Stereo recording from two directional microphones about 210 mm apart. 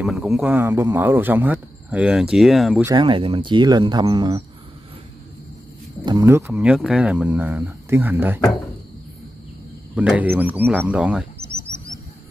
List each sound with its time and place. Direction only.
0.0 s speech: 5° right (ahead or behind)
2.8 s speech: 20° right (ahead or behind)
6.0 s speech: 15° right (ahead or behind)
9.9 s speech: 5° right (ahead or behind)